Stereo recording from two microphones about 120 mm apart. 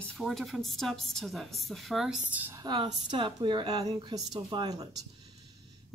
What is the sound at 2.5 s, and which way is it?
A woman's voice, 35° right (ahead or behind).